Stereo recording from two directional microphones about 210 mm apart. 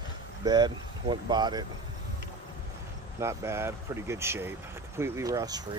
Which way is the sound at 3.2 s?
15° right (ahead or behind).